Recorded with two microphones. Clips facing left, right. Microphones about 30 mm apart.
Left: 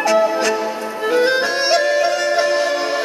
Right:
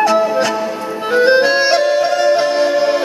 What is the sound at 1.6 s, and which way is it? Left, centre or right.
Bagpipes, centre.